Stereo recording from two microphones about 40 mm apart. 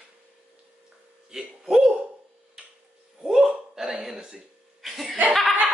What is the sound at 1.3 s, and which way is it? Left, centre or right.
Speech, centre.